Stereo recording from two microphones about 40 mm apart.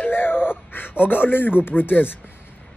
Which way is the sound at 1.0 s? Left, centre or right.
Left.